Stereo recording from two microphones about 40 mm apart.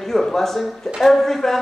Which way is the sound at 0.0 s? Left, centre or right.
Centre.